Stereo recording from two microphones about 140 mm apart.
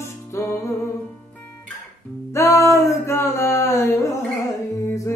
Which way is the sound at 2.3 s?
20° left (ahead or behind).